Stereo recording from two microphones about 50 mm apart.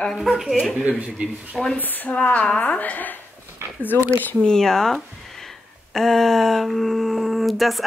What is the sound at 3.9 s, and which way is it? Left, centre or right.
Speech, left.